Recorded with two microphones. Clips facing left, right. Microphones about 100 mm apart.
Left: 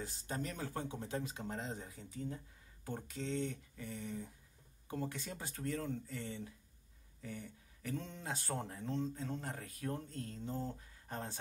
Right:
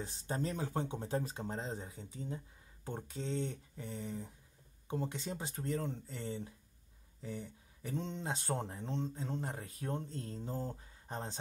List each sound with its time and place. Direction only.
0.0 s speech: 30° right (ahead or behind)
11.1 s speech: 20° right (ahead or behind)